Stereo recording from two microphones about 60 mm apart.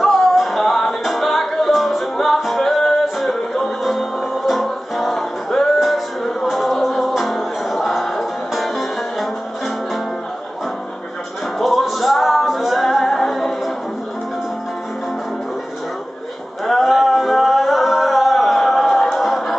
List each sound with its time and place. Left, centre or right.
0.0 s music: centre
11.5 s music: centre
16.6 s singing: centre
19.1 s music: centre